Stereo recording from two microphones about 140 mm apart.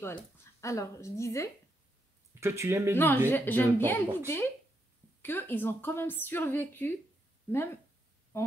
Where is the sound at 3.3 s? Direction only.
15° left (ahead or behind).